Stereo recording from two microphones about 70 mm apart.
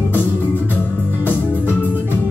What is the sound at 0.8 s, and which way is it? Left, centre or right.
Music, right.